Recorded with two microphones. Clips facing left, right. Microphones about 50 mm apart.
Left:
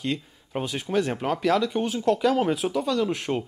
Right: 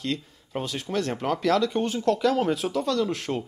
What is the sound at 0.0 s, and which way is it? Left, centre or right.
Speech, centre.